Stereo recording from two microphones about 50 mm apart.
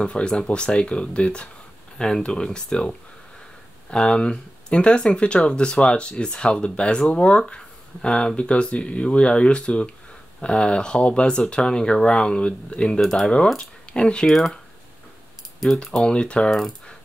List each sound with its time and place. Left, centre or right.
0.0 s speech: centre
13.0 s speech: centre
13.6 s speech: centre
14.2 s mechanisms: centre
15.8 s speech: centre
16.4 s mechanisms: centre